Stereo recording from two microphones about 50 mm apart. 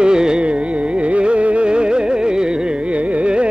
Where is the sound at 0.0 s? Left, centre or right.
Centre.